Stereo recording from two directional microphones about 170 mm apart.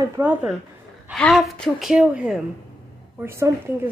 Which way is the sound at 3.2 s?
15° right (ahead or behind).